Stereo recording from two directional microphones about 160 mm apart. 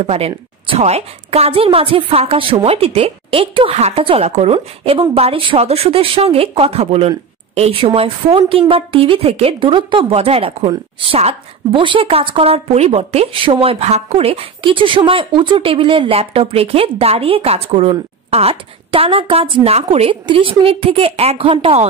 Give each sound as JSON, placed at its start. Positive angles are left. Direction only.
{"t": 0.0, "sound": "a woman's voice", "side_deg": -40}